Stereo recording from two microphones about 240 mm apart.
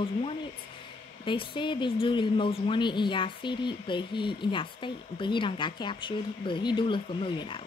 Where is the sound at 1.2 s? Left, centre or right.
Left.